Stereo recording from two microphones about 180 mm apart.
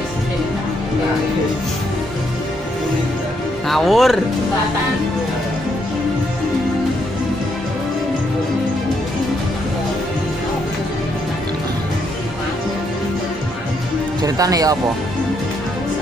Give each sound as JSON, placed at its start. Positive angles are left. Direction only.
{"t": 3.6, "sound": "speech", "side_deg": 0}
{"t": 14.2, "sound": "speech", "side_deg": -20}